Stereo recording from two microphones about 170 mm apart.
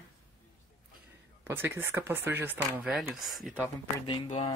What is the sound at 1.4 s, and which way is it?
Speech, 15° right (ahead or behind).